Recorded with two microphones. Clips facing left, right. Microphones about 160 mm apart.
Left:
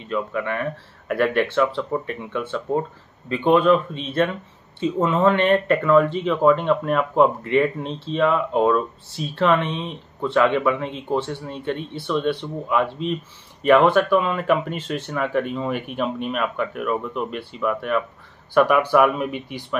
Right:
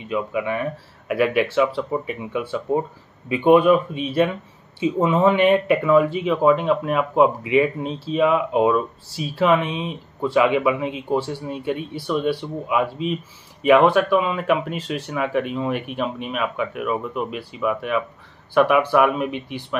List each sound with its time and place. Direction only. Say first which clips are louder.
0.0 s speech: right 1 dB; 10° right (ahead or behind)